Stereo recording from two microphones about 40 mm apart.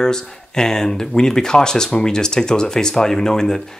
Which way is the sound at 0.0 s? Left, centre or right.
Centre.